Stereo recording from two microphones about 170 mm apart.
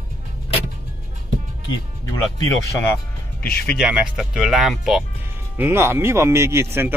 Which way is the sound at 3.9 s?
5° right (ahead or behind).